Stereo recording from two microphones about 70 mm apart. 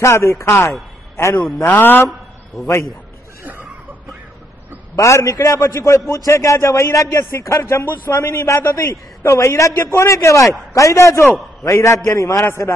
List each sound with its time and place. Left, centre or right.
0.0 s a man's voice: left
4.9 s a man's voice: left
12.4 s a man's voice: left